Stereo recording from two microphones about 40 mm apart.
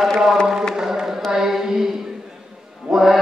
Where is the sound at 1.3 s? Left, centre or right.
Centre.